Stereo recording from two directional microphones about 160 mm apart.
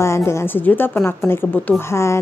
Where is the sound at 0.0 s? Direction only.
15° left (ahead or behind).